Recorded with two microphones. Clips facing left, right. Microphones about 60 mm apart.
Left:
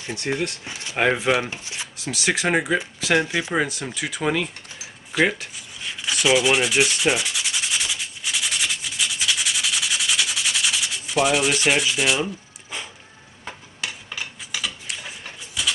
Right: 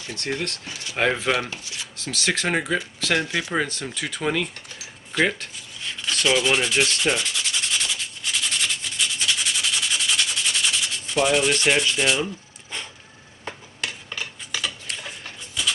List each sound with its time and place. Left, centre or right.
0.0 s speech: centre
1.5 s speech: left
2.0 s speech: centre
5.1 s rub: centre
12.7 s a sound: centre
13.7 s dishes: centre